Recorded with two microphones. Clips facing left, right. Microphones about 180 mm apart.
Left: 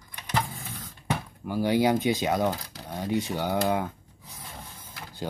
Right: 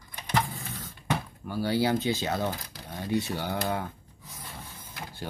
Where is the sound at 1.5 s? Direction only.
15° left (ahead or behind).